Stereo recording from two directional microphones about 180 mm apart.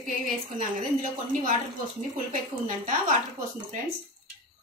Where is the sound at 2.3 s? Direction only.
45° right (ahead or behind).